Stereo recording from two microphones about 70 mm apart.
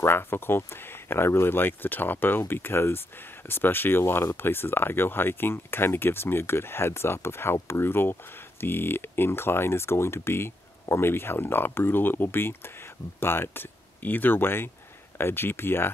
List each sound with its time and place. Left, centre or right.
0.0 s speech: left